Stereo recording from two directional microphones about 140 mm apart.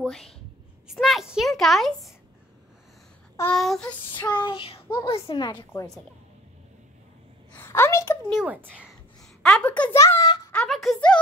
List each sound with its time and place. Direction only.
0.0 s a woman's voice: 5° left (ahead or behind)
3.5 s speech: centre (ahead or behind)
4.3 s a woman's voice: 35° left (ahead or behind)
7.5 s a sound: 15° left (ahead or behind)
8.3 s speech: 10° right (ahead or behind)
9.4 s a child's voice: 5° left (ahead or behind)
9.9 s a child's voice: 20° left (ahead or behind)
10.2 s a sound: 30° left (ahead or behind)
10.5 s speech: 5° left (ahead or behind)